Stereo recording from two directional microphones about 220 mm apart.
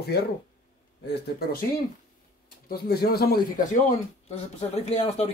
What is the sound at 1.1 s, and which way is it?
Speech, 45° left (ahead or behind).